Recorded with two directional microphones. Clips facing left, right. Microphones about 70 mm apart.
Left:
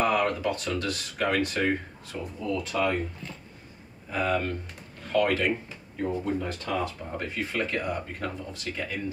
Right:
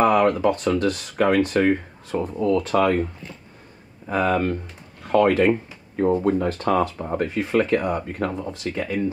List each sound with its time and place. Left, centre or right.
0.0 s speech: right
4.1 s speech: right
6.2 s speech: right
7.2 s speech: right